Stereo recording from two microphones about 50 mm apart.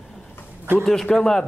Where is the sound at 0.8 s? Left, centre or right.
Centre.